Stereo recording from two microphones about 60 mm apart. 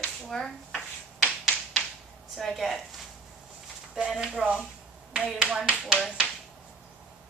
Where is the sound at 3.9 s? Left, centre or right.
Centre.